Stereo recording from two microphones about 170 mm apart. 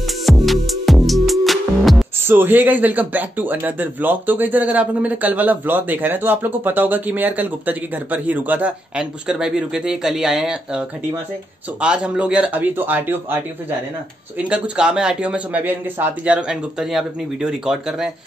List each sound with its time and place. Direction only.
0.0 s music: centre (ahead or behind)
2.2 s speech: 10° right (ahead or behind)
14.5 s a man's voice: 5° right (ahead or behind)